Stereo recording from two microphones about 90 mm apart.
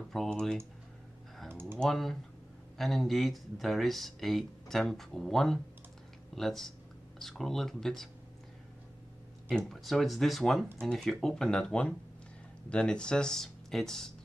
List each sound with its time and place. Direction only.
0.1 s speech: 5° left (ahead or behind)
1.5 s typing: 25° right (ahead or behind)
1.8 s speech: 5° left (ahead or behind)
9.7 s speech: centre (ahead or behind)